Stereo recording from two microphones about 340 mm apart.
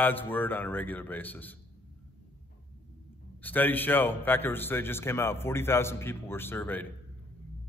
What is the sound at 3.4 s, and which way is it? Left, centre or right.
A man's voice, centre.